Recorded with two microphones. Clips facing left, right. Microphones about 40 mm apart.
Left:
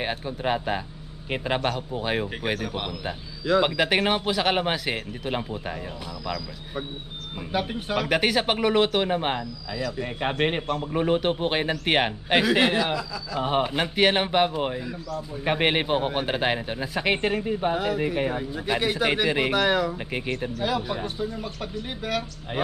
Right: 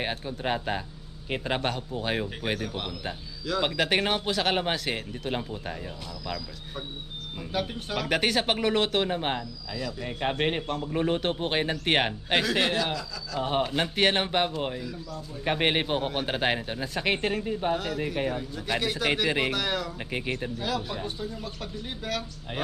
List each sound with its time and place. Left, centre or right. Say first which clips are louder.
0.0 s a man's voice: left 3 dB; centre
19.2 s speech: left 2 dB; centre
19.5 s a man's voice: left 7 dB; centre